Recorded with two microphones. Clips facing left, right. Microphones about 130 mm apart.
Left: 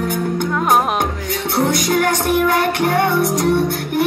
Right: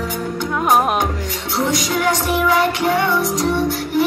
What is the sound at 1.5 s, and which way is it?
Music, 55° left (ahead or behind).